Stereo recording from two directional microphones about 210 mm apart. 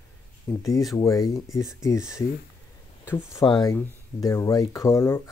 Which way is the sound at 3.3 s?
15° left (ahead or behind).